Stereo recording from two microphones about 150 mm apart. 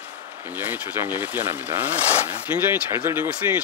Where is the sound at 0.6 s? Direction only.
15° right (ahead or behind).